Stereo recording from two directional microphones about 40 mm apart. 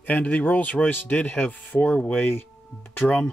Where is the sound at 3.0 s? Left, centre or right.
Centre.